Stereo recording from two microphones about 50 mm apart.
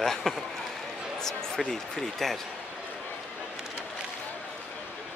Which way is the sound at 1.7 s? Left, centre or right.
Centre.